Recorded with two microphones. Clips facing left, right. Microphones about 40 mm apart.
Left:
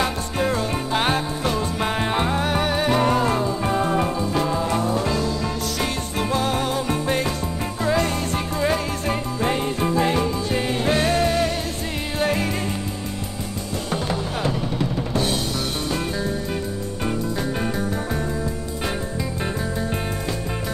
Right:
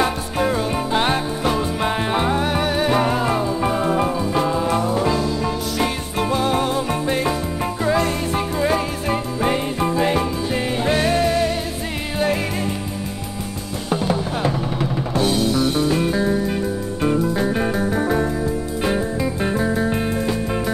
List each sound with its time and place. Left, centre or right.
0.0 s music: centre
17.0 s music: centre